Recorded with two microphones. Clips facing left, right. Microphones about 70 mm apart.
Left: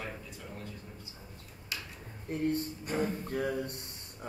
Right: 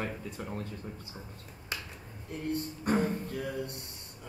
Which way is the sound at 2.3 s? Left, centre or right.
Left.